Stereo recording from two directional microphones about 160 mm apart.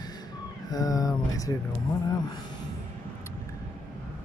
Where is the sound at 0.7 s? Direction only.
25° left (ahead or behind).